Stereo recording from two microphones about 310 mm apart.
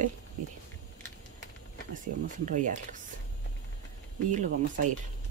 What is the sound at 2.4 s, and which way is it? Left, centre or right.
Speech, right.